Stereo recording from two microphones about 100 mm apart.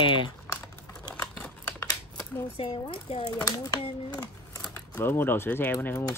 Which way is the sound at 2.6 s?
65° left (ahead or behind).